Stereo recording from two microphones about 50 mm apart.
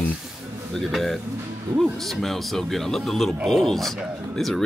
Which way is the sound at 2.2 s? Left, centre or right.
Centre.